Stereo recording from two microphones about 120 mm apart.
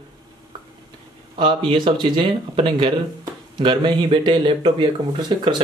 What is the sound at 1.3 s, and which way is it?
A man's voice, 45° right (ahead or behind).